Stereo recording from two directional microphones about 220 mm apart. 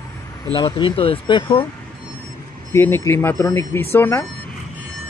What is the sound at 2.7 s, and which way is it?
Speech, 10° left (ahead or behind).